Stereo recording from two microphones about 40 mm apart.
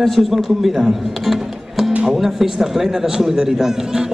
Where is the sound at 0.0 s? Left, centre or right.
Centre.